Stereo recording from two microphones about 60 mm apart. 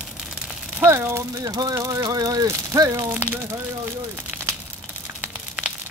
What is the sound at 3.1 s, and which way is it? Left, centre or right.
Speech, right.